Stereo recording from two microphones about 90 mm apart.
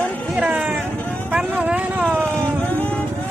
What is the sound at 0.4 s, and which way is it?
Vehicle, 15° right (ahead or behind).